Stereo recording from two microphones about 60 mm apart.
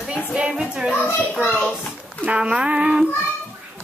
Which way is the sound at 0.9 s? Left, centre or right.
Left.